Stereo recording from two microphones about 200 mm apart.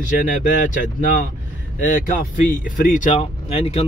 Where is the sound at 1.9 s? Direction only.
45° left (ahead or behind).